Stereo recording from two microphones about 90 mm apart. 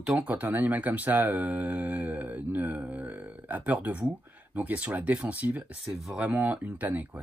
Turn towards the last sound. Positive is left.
turn(degrees=-20)  # may be behind; listen again after turning